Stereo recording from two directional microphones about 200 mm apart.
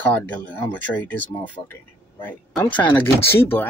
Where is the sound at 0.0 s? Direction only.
10° left (ahead or behind).